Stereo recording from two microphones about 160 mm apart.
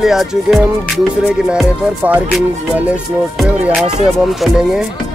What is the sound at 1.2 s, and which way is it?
Music, 5° right (ahead or behind).